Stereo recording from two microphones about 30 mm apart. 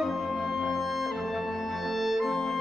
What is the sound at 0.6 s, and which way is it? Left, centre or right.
Music, centre.